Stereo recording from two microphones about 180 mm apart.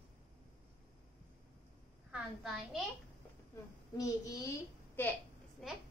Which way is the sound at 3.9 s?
20° left (ahead or behind).